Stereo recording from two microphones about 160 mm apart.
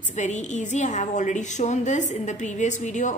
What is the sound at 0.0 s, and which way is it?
A woman's voice, 50° left (ahead or behind).